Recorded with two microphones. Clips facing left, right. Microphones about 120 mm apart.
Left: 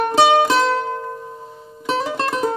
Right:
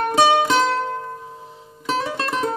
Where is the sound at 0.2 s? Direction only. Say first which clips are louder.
Left 2 dB; centre (ahead or behind).